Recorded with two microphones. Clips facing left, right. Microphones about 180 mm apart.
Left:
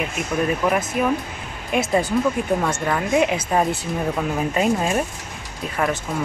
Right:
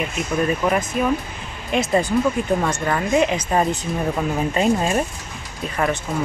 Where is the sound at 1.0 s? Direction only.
10° left (ahead or behind).